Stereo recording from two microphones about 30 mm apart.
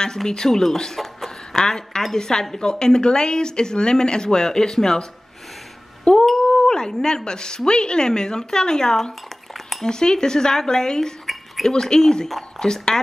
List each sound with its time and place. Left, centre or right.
0.5 s speech: centre
1.2 s a sound: centre
2.1 s speech: left
6.2 s speech: centre